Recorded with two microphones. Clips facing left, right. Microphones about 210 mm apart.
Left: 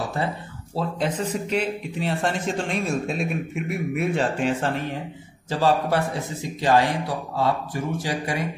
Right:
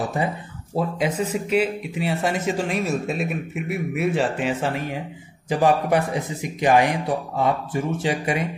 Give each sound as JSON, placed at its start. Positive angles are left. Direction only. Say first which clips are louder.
{"t": 0.2, "sound": "a man's voice", "louder": "right 2 dB", "side_deg": -15}